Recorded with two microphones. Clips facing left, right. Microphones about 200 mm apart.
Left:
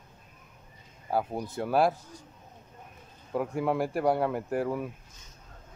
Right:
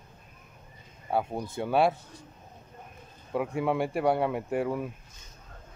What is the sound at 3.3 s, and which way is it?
Speech, centre (ahead or behind).